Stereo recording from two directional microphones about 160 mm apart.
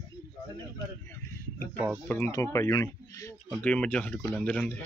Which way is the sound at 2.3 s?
20° left (ahead or behind).